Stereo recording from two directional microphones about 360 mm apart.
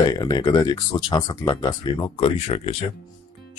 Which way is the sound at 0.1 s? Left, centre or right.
Centre.